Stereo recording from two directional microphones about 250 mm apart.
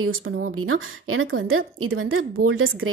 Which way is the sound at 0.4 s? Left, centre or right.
Right.